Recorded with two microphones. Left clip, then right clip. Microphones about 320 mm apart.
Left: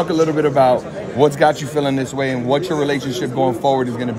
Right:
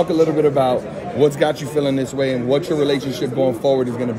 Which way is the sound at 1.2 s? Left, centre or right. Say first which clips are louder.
Left 3 dB; left.